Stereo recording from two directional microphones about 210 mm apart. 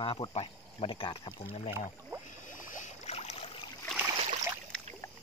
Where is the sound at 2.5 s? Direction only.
40° left (ahead or behind).